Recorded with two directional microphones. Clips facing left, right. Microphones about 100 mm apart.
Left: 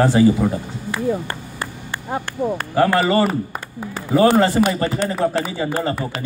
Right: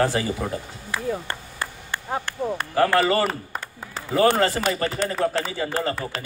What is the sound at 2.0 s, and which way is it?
A man's voice, 5° left (ahead or behind).